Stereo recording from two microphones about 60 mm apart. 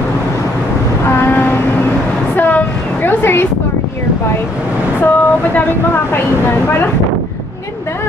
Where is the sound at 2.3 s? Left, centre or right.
Left.